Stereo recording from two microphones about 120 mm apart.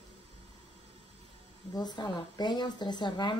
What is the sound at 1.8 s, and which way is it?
Speech, 35° left (ahead or behind).